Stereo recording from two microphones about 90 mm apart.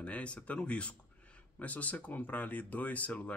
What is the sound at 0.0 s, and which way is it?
Speech, 15° left (ahead or behind).